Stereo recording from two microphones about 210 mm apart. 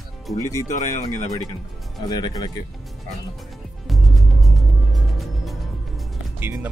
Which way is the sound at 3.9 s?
Centre (ahead or behind).